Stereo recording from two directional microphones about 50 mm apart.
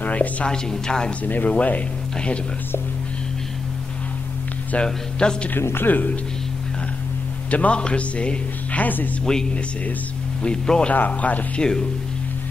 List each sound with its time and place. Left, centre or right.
0.0 s a woman's voice: left
0.5 s speech: centre
1.2 s speech: left
4.7 s speech: centre
5.6 s speech: left
5.9 s speech: left
7.5 s speech: left
8.8 s speech: left
9.2 s speech: centre
11.0 s speech: left